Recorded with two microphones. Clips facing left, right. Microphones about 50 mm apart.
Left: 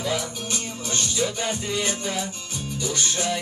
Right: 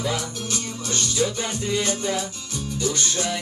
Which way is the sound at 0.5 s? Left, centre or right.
Left.